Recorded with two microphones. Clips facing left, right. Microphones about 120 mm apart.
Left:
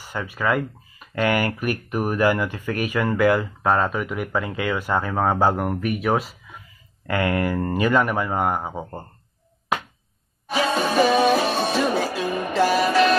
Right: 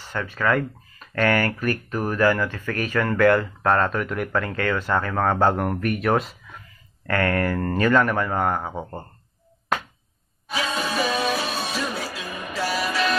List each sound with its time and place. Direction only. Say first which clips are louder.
0.0 s speech: even; 10° left (ahead or behind)
10.7 s music: left 7 dB; 30° left (ahead or behind)